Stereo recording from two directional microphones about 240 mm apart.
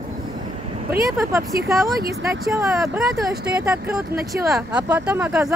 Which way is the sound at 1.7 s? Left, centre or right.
Centre.